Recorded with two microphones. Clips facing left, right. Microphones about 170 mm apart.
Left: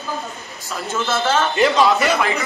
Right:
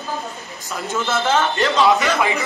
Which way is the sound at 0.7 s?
20° right (ahead or behind).